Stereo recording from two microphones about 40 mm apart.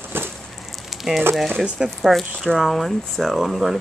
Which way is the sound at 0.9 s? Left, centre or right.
Centre.